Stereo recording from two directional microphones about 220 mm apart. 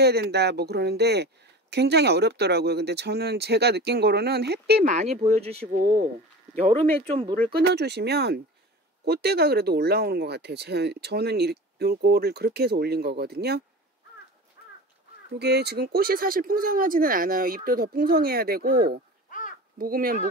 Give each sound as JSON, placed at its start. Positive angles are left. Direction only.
{"t": 0.0, "sound": "speech", "side_deg": -45}
{"t": 4.9, "sound": "speech", "side_deg": -30}
{"t": 6.6, "sound": "speech", "side_deg": -25}
{"t": 7.5, "sound": "speech", "side_deg": -50}
{"t": 15.3, "sound": "speech", "side_deg": -50}